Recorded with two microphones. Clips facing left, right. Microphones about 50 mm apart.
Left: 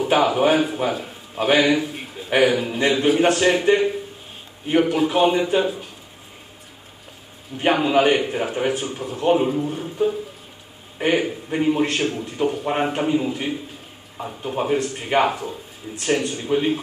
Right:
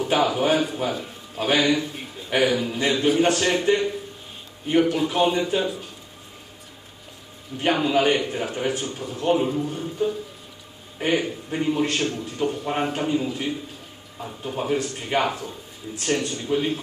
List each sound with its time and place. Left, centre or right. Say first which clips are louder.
0.0 s a man's voice: left 4 dB; centre
2.0 s a sound: left 4 dB; centre
2.6 s a man's voice: left 3 dB; centre
3.7 s speech: left 4 dB; left
4.6 s a man's voice: left 2 dB; centre
7.6 s a man's voice: left 3 dB; centre